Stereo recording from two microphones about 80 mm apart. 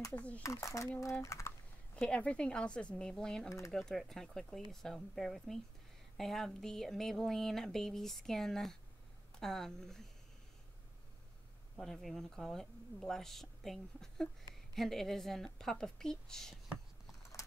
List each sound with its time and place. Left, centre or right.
0.1 s speech: centre
0.4 s speech: left
2.0 s speech: centre
3.4 s speech: left
3.7 s a woman's voice: centre
11.8 s a woman's voice: centre